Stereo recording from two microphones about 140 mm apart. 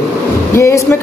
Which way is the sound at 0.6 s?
20° left (ahead or behind).